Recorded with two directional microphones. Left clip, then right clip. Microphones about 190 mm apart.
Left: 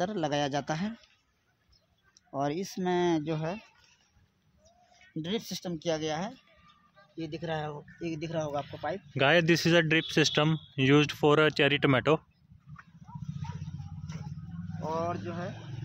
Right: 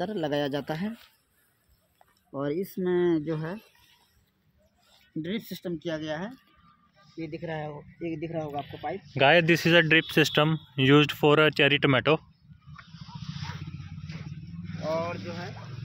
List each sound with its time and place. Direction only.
0.0 s speech: 10° left (ahead or behind)
2.3 s speech: 10° left (ahead or behind)
5.2 s speech: 25° left (ahead or behind)
8.6 s speech: 5° left (ahead or behind)